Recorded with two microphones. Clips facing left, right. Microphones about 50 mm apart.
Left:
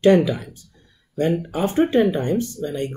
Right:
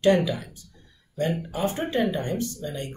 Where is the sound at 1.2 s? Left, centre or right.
Left.